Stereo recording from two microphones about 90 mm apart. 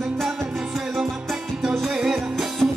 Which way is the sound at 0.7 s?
5° right (ahead or behind).